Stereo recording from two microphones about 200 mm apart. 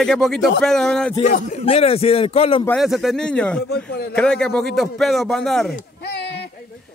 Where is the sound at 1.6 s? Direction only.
30° left (ahead or behind).